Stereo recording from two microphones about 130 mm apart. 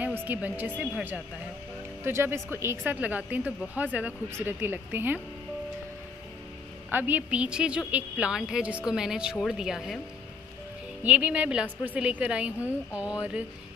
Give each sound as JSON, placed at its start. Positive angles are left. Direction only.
{"t": 0.2, "sound": "speech", "side_deg": -15}
{"t": 6.9, "sound": "speech", "side_deg": -15}
{"t": 11.0, "sound": "speech", "side_deg": -10}